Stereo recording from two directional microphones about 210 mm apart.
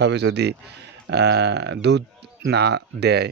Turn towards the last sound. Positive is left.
turn(degrees=-50)  # may be behind; listen again after turning